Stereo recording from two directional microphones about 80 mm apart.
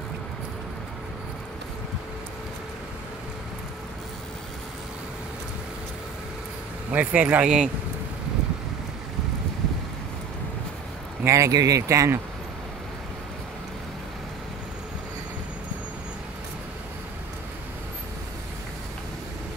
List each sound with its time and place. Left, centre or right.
6.9 s speech: centre
11.2 s speech: right